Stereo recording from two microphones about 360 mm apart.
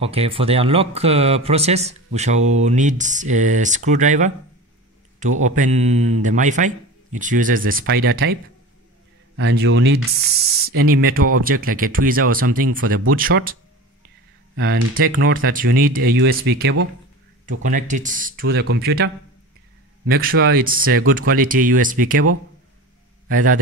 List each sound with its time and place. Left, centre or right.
0.0 s a man's voice: centre
5.4 s a man's voice: right
9.4 s a man's voice: right
20.1 s a man's voice: right
23.3 s a man's voice: right